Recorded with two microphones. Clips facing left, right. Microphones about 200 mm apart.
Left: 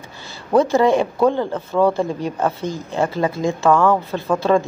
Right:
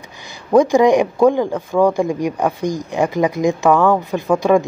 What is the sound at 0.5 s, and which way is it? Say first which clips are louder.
A man's voice: right 3 dB; 15° right (ahead or behind).